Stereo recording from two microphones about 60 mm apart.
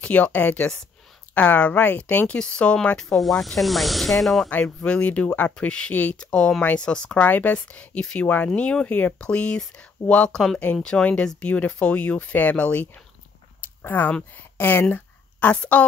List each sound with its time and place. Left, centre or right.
0.0 s speech: left
2.3 s speech: centre
3.2 s snake: centre
4.5 s speech: left
7.2 s speech: left
10.3 s snake: centre
10.8 s speech: centre
13.6 s a sound: left
14.3 s speech: left
14.9 s a sound: left